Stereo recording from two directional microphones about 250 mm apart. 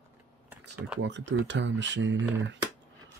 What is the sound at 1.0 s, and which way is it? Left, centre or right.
Speech, right.